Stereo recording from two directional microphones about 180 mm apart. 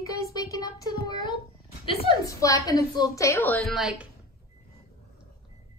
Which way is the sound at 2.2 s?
20° left (ahead or behind).